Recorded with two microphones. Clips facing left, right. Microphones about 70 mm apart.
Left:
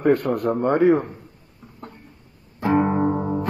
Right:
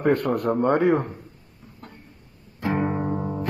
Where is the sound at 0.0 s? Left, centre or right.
Right.